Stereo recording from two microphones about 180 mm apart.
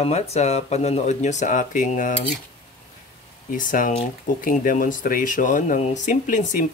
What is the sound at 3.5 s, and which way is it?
Speech, 45° left (ahead or behind).